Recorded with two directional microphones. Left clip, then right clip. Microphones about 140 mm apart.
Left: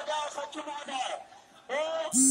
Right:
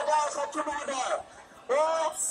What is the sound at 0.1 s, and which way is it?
Music, 25° right (ahead or behind).